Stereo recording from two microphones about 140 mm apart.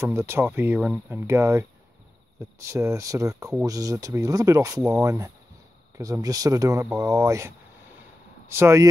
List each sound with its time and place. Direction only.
0.0 s speech: 20° right (ahead or behind)
1.2 s speech: 20° right (ahead or behind)